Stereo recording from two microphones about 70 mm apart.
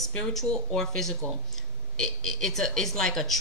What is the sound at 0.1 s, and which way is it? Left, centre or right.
Speech, centre.